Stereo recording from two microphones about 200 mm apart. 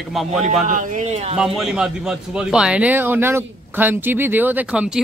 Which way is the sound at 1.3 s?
5° right (ahead or behind).